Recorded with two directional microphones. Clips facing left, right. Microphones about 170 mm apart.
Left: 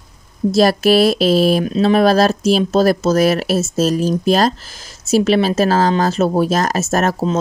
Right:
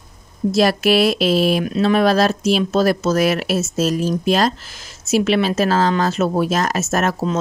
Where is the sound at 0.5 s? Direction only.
40° left (ahead or behind).